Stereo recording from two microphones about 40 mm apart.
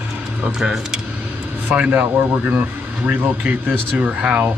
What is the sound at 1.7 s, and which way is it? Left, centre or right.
Speech, right.